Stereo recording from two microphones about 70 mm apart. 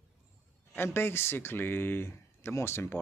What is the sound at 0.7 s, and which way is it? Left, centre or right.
Speech, left.